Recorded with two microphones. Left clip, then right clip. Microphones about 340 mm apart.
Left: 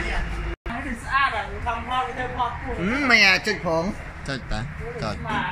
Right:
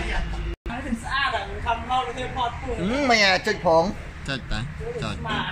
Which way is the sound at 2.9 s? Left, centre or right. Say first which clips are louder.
Left 2 dB; centre.